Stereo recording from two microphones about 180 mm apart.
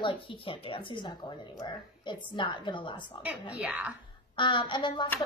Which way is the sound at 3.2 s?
5° right (ahead or behind).